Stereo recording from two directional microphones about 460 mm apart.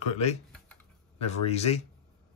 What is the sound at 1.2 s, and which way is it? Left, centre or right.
Speech, centre.